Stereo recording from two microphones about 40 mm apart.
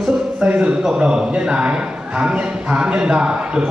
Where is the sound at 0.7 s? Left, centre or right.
Right.